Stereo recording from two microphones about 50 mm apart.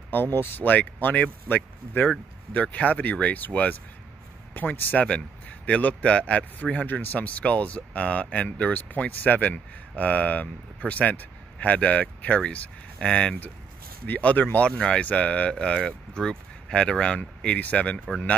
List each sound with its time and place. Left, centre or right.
0.1 s speech: left
14.0 s speech: left
14.8 s speech: centre
15.6 s speech: centre